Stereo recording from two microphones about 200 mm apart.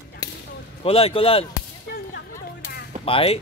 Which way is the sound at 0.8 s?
30° left (ahead or behind).